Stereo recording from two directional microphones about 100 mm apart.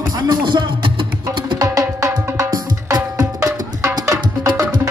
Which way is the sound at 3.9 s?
35° right (ahead or behind).